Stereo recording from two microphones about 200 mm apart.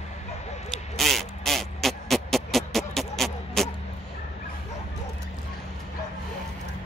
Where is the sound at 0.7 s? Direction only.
Centre (ahead or behind).